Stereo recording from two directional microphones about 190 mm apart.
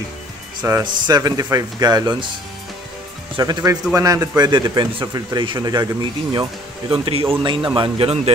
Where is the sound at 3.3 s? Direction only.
20° right (ahead or behind).